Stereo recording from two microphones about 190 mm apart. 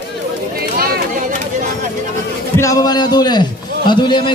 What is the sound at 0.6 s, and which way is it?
Chatter, 55° right (ahead or behind).